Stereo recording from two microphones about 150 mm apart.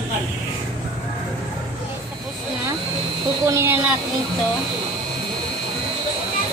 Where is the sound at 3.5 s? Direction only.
15° right (ahead or behind).